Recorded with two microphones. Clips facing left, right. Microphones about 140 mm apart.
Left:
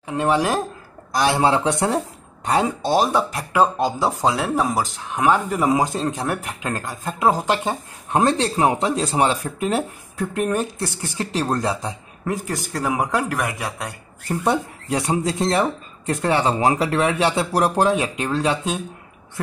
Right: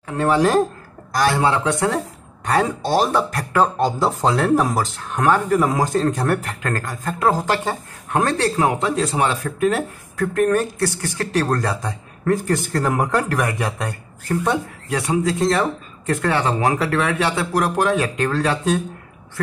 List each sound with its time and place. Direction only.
0.0 s speech: 20° left (ahead or behind)
14.5 s speech: 25° left (ahead or behind)
17.5 s speech: 35° left (ahead or behind)
17.9 s speech: 20° left (ahead or behind)